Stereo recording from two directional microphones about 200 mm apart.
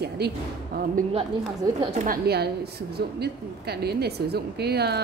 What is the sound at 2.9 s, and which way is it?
Speech, 55° right (ahead or behind).